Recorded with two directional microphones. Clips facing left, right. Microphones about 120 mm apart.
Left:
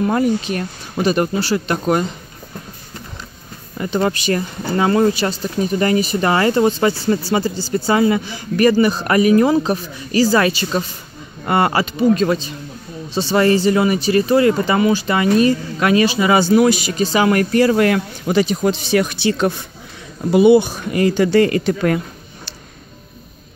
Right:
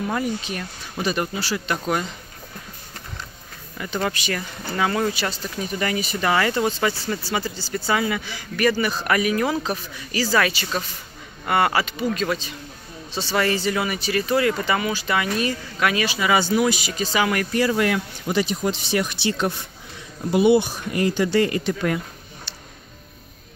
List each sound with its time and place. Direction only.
0.0 s speech: 50° left (ahead or behind)
3.8 s speech: 35° left (ahead or behind)
16.3 s speech: 60° left (ahead or behind); by 17.5 s 40° left (ahead or behind)
17.5 s speech: 60° left (ahead or behind); by 19.1 s 90° left
20.7 s speech: 90° left